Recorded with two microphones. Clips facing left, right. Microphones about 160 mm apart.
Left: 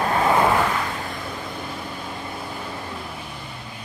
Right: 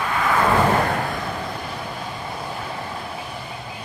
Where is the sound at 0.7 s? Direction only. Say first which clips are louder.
Right 6 dB; 55° right (ahead or behind).